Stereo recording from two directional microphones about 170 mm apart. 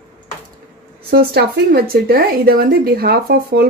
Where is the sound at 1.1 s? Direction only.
70° right (ahead or behind).